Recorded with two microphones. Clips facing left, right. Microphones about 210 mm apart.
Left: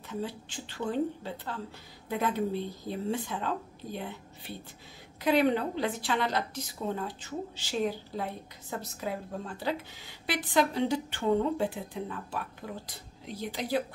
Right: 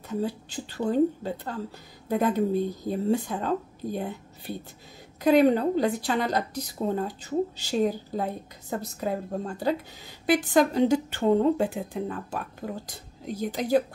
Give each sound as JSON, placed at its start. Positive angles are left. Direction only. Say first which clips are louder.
{"t": 0.1, "sound": "a woman's voice", "louder": "right 6 dB", "side_deg": -40}